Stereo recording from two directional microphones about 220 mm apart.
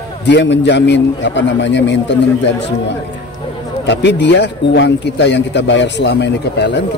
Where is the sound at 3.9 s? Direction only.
55° left (ahead or behind).